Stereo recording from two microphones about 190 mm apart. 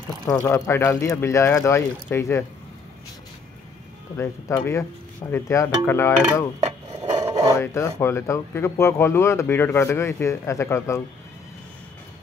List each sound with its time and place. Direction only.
0.3 s speech: 15° left (ahead or behind)
4.5 s speech: 15° left (ahead or behind)
7.2 s a sound: 15° right (ahead or behind)
7.5 s speech: 15° left (ahead or behind)